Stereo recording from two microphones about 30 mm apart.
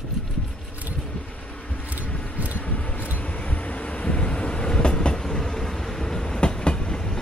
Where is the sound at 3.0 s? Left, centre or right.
Left.